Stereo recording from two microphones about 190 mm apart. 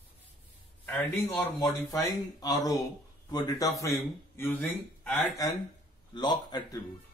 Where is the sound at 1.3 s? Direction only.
20° left (ahead or behind).